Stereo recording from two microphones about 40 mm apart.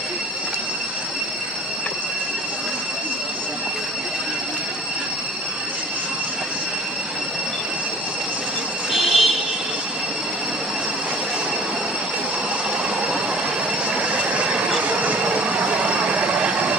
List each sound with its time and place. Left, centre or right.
8.9 s vehicle: centre
13.9 s vehicle: right
14.8 s train: right
15.4 s train: right